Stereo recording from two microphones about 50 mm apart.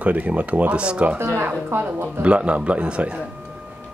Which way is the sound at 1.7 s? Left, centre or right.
Right.